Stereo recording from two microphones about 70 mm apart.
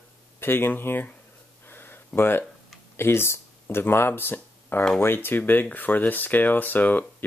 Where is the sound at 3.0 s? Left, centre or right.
Left.